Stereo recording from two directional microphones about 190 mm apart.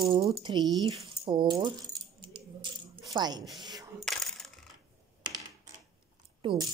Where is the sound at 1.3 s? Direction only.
20° right (ahead or behind).